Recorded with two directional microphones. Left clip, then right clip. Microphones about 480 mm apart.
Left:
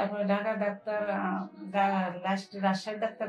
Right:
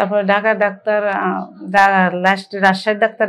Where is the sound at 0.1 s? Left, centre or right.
Right.